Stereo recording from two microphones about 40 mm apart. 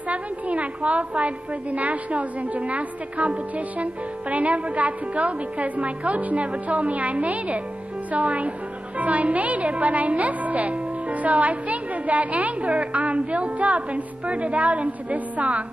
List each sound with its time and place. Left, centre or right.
0.1 s a woman's voice: right